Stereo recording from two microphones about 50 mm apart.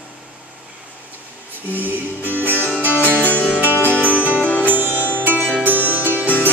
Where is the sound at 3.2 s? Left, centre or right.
Left.